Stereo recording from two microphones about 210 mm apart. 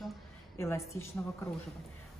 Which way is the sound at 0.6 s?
10° left (ahead or behind).